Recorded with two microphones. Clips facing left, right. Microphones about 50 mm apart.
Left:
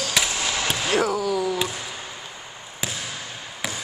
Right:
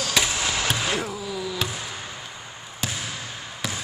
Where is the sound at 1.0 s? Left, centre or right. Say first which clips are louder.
Left 8 dB; left.